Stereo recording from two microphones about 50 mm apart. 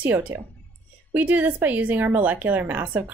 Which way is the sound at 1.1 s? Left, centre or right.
Right.